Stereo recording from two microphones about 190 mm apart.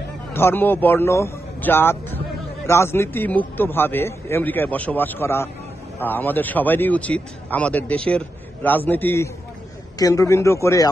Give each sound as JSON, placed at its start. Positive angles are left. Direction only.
{"t": 0.3, "sound": "speech", "side_deg": 10}